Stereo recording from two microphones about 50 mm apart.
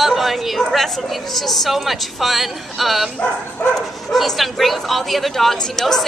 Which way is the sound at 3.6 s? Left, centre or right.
Left.